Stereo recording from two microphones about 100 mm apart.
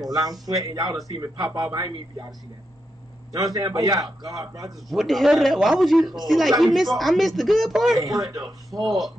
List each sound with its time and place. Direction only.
0.0 s a man's voice: 40° right (ahead or behind)
3.3 s a man's voice: 35° right (ahead or behind)
4.8 s speech: centre (ahead or behind)
8.0 s a man's voice: 35° right (ahead or behind)